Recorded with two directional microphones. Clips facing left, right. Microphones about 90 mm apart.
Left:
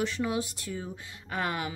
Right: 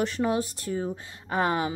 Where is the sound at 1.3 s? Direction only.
30° right (ahead or behind).